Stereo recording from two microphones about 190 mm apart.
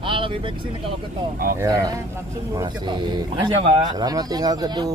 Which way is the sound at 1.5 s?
15° right (ahead or behind).